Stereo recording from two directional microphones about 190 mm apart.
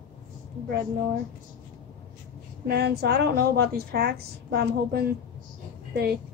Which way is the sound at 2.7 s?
60° right (ahead or behind).